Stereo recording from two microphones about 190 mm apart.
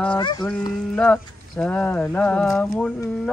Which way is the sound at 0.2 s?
25° left (ahead or behind).